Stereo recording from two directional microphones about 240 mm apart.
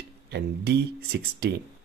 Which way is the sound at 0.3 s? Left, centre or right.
Right.